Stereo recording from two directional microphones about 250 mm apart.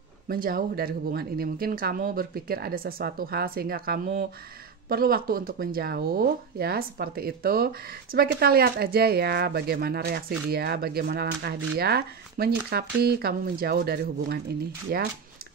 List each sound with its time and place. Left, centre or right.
0.3 s speech: right